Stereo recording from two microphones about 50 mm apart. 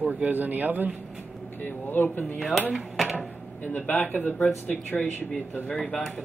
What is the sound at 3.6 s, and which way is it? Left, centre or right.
Speech, left.